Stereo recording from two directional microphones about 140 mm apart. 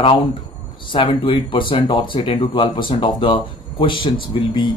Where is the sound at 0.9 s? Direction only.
35° left (ahead or behind).